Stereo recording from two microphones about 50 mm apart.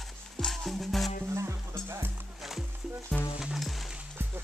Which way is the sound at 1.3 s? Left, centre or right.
Right.